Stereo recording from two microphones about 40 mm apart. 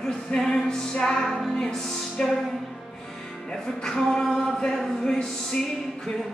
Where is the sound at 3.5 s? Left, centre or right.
Centre.